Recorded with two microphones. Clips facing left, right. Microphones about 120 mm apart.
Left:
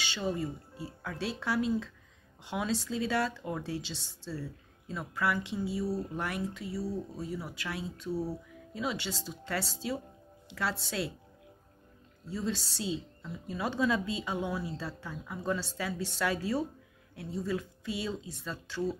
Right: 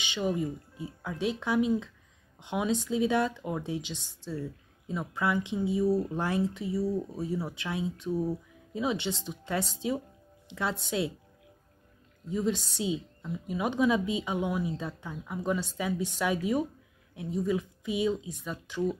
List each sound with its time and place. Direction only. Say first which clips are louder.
0.0 s speech: right 3 dB; 15° right (ahead or behind)
12.3 s speech: right 5 dB; 15° right (ahead or behind)